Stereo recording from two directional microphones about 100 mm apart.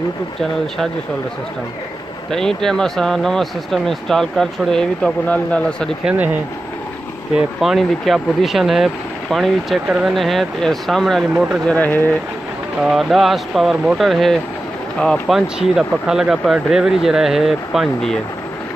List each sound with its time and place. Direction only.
2.3 s speech: 5° left (ahead or behind)
6.0 s speech: 15° right (ahead or behind)
7.3 s speech: centre (ahead or behind)
10.1 s speech: centre (ahead or behind)
11.6 s speech: 15° left (ahead or behind)
12.8 s speech: centre (ahead or behind)